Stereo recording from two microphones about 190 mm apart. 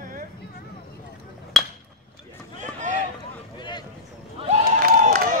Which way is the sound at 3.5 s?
25° left (ahead or behind).